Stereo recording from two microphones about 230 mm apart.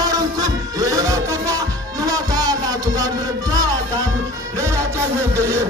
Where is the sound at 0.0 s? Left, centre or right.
Centre.